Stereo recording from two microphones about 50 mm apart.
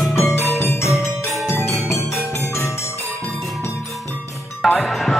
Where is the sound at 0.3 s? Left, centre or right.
Left.